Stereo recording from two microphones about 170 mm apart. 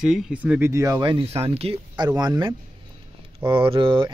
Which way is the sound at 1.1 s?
35° right (ahead or behind).